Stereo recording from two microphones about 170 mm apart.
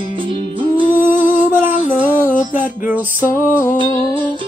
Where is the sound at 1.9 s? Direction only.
10° right (ahead or behind).